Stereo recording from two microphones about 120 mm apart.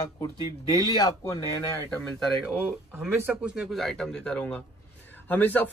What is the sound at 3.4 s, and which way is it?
Speech, 5° right (ahead or behind).